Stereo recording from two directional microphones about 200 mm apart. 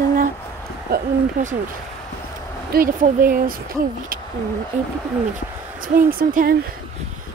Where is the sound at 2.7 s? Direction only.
45° right (ahead or behind).